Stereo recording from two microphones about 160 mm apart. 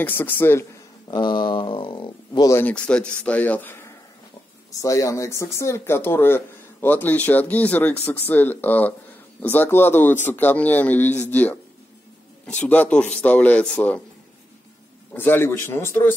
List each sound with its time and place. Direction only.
0.0 s speech: 15° left (ahead or behind)
1.0 s speech: 30° left (ahead or behind)
2.5 s speech: 10° left (ahead or behind)
4.8 s speech: 20° left (ahead or behind)
15.1 s speech: 15° left (ahead or behind)